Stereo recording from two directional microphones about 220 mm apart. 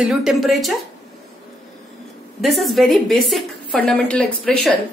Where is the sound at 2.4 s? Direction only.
Centre (ahead or behind).